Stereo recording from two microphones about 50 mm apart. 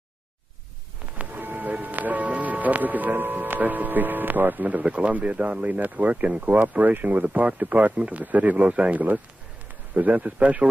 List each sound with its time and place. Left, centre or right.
1.1 s speech: right